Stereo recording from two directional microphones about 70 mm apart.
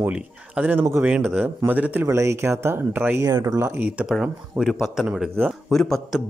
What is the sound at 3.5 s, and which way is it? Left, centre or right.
Speech, right.